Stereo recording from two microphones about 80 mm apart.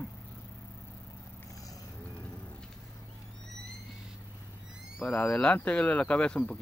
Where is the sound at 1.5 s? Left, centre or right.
Left.